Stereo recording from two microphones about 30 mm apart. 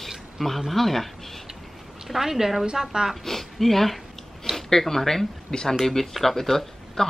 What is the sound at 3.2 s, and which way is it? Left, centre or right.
Speech, centre.